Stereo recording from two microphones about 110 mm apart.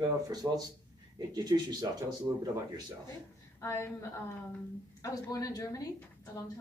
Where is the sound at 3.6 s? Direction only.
25° left (ahead or behind).